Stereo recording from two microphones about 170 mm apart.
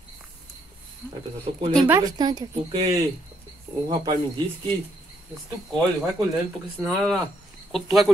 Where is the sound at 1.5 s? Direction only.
25° right (ahead or behind).